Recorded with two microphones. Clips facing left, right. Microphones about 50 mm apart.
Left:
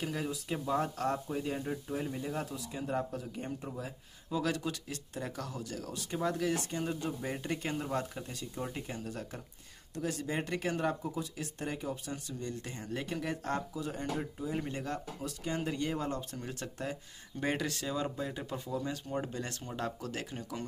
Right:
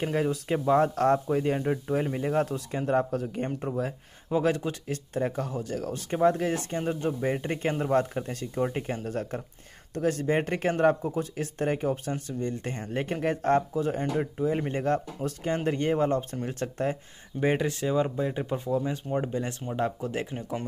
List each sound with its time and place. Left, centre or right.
0.0 s speech: right
4.4 s speech: right
17.4 s speech: right